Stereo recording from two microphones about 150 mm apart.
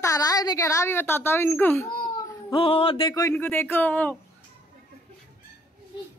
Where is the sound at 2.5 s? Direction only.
35° left (ahead or behind); by 4.1 s 10° left (ahead or behind).